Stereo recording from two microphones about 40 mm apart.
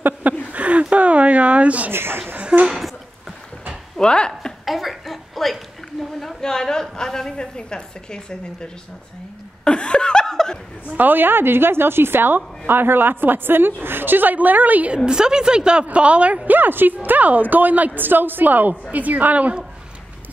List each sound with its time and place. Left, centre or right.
0.5 s a sound: right
1.9 s a woman's voice: right
4.0 s speech: left
4.6 s a sound: centre
6.1 s a woman's voice: centre
9.7 s laughter: left
10.9 s a woman's voice: right
15.0 s a woman's voice: centre
16.4 s a woman's voice: right